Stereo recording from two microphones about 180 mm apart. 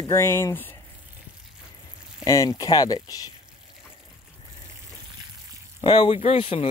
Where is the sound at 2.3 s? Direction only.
20° left (ahead or behind).